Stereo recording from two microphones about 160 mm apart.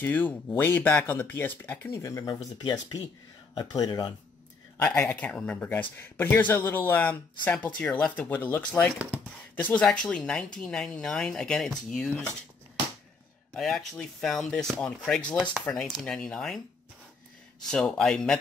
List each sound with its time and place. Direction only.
0.0 s speech: 10° left (ahead or behind)
4.7 s speech: 10° left (ahead or behind)
13.5 s speech: centre (ahead or behind)
17.6 s speech: 5° left (ahead or behind)